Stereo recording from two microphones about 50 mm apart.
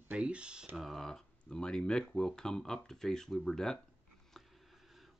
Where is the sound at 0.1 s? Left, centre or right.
Right.